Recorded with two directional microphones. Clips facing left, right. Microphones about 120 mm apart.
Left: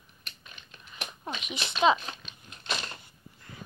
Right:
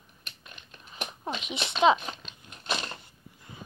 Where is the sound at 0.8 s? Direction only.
30° right (ahead or behind).